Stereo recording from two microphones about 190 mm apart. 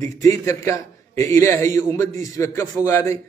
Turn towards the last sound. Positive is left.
turn(degrees=15)  # may be behind; listen again after turning